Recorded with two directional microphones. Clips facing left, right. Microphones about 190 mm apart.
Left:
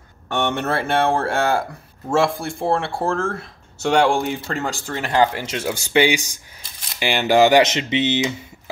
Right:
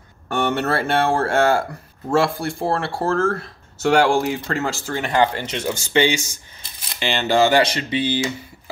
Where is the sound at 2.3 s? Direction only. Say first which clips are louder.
Left 1 dB; centre (ahead or behind).